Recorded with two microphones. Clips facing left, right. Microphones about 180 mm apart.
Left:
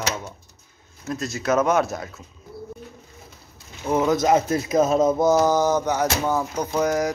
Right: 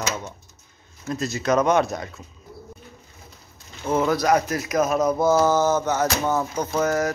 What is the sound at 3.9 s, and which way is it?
Speech, 20° left (ahead or behind).